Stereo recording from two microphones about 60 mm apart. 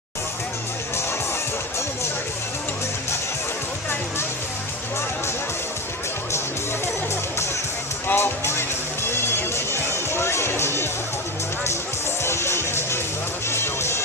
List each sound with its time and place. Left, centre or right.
8.1 s music: left
12.2 s music: left